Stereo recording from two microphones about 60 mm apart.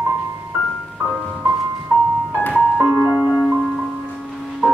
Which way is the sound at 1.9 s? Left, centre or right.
Right.